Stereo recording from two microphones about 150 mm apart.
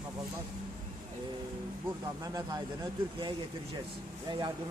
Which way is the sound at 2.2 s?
25° right (ahead or behind).